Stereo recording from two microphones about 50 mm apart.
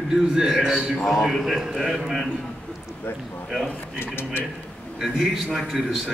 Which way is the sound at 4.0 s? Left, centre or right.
Left.